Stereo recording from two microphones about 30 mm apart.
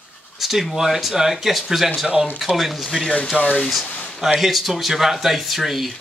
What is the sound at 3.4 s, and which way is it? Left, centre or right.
Speech, right.